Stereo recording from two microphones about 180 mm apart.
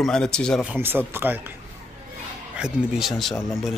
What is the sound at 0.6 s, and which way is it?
Speech, 10° right (ahead or behind).